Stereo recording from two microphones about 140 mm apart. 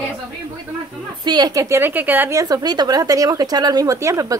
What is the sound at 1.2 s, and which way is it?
A woman's voice, 30° right (ahead or behind).